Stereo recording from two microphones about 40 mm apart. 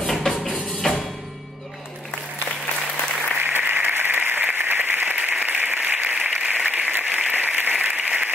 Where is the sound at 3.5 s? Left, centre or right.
Right.